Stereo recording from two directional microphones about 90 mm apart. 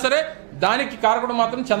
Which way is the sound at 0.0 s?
15° right (ahead or behind).